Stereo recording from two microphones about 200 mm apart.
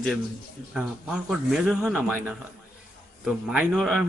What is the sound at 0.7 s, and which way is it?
Speech, 5° right (ahead or behind).